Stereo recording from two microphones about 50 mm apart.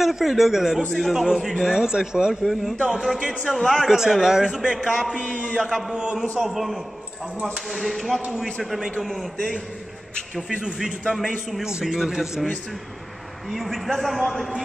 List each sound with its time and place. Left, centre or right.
0.0 s a man's voice: centre
1.8 s a man's voice: centre
3.4 s a man's voice: centre
3.7 s a man's voice: centre
11.1 s a man's voice: centre
13.5 s a man's voice: centre